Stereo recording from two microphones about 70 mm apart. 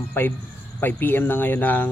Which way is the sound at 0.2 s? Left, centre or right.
Left.